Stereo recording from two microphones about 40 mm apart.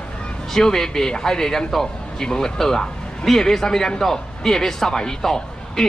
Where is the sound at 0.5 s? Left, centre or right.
Centre.